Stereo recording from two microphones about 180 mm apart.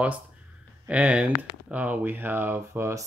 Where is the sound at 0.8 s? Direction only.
5° right (ahead or behind).